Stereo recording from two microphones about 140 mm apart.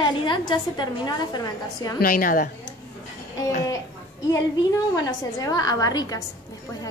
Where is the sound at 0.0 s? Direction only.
35° left (ahead or behind).